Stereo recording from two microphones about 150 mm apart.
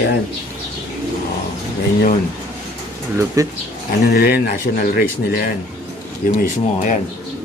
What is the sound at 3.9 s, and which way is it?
Speech, 80° left.